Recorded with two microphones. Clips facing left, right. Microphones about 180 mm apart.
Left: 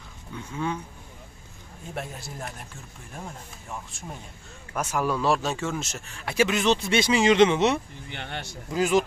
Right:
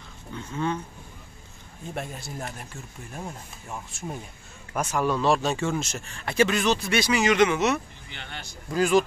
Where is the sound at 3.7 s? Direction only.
5° right (ahead or behind).